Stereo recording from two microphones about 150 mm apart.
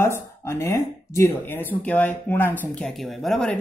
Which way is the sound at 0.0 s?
20° left (ahead or behind).